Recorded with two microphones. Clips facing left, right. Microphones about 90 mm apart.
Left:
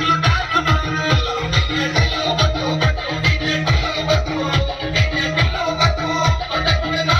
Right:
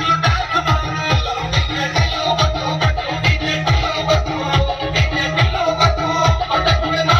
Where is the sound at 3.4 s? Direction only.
40° right (ahead or behind).